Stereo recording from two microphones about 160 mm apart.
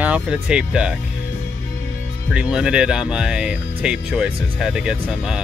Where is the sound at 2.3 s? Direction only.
5° right (ahead or behind).